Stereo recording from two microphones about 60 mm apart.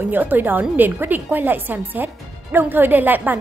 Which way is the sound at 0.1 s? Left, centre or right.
Right.